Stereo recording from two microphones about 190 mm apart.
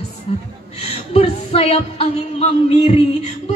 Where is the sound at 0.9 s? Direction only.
30° left (ahead or behind).